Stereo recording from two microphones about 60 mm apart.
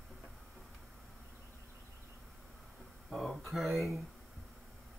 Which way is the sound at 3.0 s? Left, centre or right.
Centre.